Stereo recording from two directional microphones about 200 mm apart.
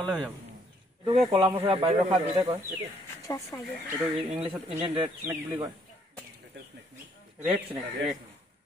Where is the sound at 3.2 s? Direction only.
15° left (ahead or behind).